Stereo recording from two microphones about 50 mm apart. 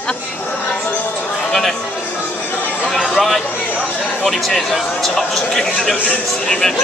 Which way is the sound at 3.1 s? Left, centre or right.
Centre.